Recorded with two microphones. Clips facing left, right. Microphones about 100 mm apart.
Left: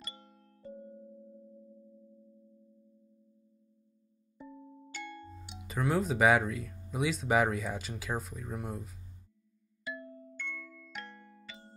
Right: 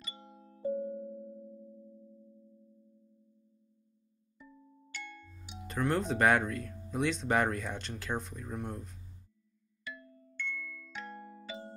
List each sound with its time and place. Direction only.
0.0 s music: 5° right (ahead or behind)
0.7 s music: 60° right (ahead or behind)
4.4 s music: 40° left (ahead or behind)
5.6 s speech: 5° left (ahead or behind)
9.9 s marimba: 30° left (ahead or behind)
10.8 s music: centre (ahead or behind)